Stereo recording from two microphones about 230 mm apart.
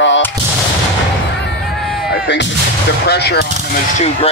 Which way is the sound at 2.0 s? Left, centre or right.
Left.